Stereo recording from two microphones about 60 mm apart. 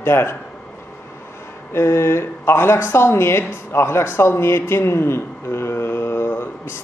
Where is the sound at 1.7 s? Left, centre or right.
Left.